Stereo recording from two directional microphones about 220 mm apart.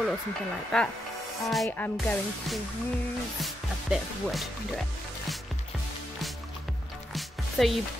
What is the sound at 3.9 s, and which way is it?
Speech, centre (ahead or behind).